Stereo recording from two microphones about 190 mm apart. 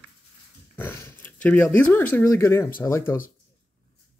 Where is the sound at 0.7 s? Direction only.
10° left (ahead or behind).